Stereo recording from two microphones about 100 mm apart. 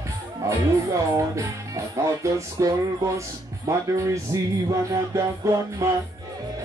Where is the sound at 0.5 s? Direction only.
30° right (ahead or behind).